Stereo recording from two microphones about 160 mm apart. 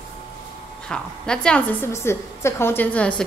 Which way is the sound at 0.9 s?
5° left (ahead or behind).